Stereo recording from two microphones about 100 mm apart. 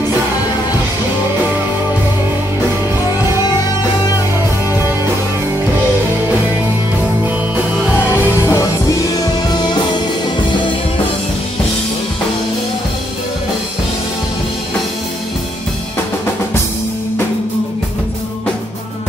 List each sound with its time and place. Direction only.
8.1 s music: 30° left (ahead or behind)
9.5 s music: 45° left (ahead or behind)